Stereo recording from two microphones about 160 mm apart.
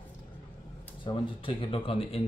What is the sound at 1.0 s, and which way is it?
Speech, 30° left (ahead or behind).